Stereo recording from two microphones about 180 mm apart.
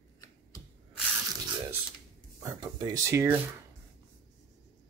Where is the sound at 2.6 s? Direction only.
20° right (ahead or behind).